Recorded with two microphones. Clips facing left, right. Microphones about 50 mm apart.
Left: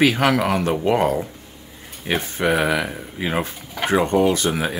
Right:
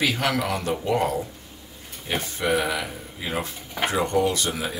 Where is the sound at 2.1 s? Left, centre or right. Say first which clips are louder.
Left 4 dB; left.